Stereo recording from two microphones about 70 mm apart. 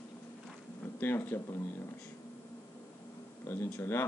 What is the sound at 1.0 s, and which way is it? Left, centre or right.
Speech, left.